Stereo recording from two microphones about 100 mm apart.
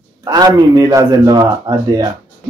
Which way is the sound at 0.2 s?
40° right (ahead or behind).